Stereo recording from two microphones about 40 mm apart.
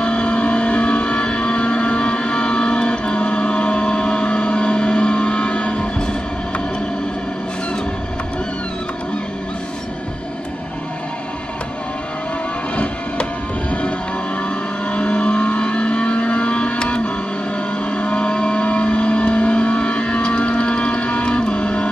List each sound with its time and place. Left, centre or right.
0.0 s vehicle: left
12.7 s vehicle: left